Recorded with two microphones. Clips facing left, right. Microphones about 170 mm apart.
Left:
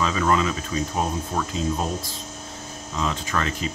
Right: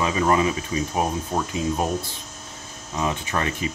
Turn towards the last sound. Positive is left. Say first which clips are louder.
# right 1 dB
turn(degrees=-15)  # may be behind; listen again after turning